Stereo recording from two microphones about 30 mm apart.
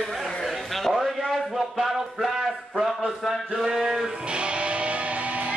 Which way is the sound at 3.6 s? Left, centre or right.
Centre.